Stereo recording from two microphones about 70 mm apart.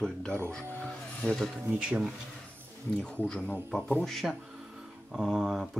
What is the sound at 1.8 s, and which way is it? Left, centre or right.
Speech, centre.